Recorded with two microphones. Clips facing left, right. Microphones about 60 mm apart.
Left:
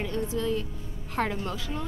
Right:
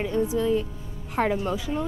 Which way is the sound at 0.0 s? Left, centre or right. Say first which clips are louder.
Right 5 dB; centre.